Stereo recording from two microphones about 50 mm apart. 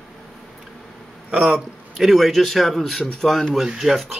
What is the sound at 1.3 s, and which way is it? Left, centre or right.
Speech, right.